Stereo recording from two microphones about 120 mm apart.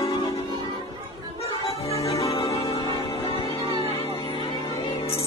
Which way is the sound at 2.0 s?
55° left (ahead or behind).